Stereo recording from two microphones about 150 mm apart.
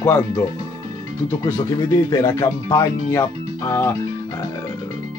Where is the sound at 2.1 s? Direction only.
25° left (ahead or behind).